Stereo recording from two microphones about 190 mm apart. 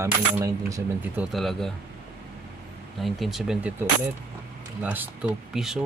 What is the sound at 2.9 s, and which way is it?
Speech, centre (ahead or behind).